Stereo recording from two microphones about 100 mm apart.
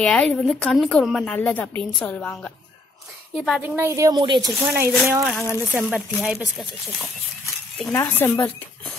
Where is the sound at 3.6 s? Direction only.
25° right (ahead or behind).